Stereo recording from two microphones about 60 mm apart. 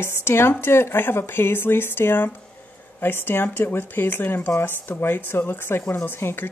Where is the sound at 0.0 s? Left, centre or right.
Left.